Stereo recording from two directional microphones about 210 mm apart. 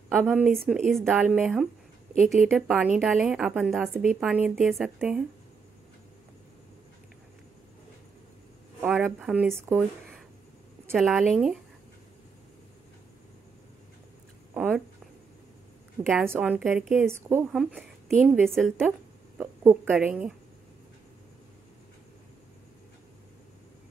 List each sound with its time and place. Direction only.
0.1 s a woman's voice: 5° right (ahead or behind)
8.8 s a woman's voice: 5° right (ahead or behind)
14.5 s a sound: 5° right (ahead or behind)
16.1 s a woman's voice: 5° right (ahead or behind)
18.9 s a sound: 10° right (ahead or behind)
19.8 s a woman's voice: 5° right (ahead or behind)